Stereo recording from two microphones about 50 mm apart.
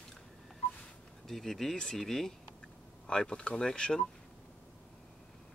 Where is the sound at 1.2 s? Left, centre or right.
Centre.